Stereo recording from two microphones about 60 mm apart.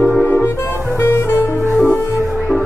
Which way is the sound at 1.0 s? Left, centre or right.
Left.